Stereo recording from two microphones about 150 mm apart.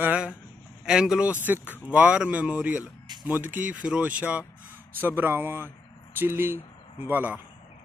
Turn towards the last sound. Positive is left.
turn(degrees=-10)  # may be behind; listen again after turning